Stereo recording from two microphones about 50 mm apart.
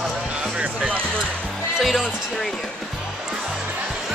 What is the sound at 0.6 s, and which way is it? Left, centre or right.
Music, right.